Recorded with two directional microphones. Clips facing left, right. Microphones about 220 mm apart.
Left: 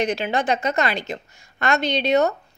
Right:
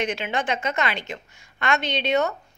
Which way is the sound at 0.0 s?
40° left (ahead or behind).